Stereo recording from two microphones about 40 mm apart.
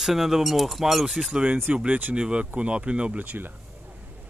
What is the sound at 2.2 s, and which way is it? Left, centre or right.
Speech, right.